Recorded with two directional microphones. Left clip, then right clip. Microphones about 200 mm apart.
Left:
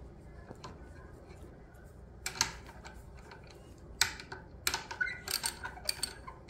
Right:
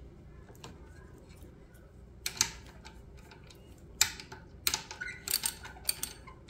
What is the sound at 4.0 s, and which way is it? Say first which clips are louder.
Typing: right 1 dB; 25° right (ahead or behind).